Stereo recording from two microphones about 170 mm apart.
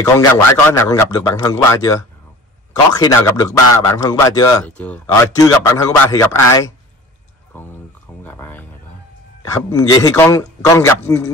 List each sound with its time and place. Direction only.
0.0 s speech: 20° left (ahead or behind)
4.6 s speech: 10° left (ahead or behind)
5.0 s speech: 20° left (ahead or behind)